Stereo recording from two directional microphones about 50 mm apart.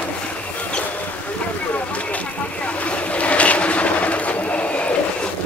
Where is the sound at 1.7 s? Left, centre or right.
Left.